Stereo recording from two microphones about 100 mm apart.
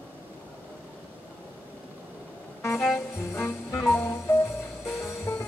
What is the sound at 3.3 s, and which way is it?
Music, 25° left (ahead or behind).